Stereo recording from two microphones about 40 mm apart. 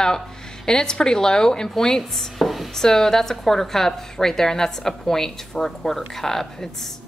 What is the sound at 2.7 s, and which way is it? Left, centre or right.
A woman's voice, centre.